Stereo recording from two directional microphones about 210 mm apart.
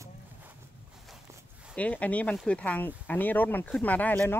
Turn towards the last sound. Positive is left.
turn(degrees=10)  # may be behind; listen again after turning